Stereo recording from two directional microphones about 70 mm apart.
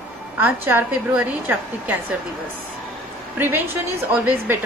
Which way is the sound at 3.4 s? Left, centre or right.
Right.